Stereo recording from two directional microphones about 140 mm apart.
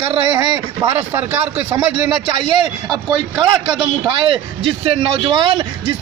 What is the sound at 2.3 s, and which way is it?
Speech, 35° right (ahead or behind).